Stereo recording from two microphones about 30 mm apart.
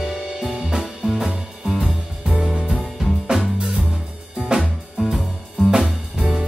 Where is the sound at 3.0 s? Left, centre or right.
Right.